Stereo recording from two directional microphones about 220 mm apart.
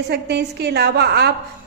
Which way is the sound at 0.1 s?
50° right (ahead or behind).